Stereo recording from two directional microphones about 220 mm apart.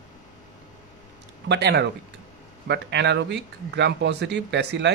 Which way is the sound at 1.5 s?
50° right (ahead or behind).